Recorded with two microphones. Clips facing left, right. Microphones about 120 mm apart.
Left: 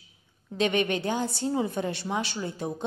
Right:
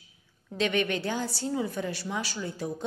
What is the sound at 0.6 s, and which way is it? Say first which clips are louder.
A woman's voice: left 2 dB; 20° left (ahead or behind).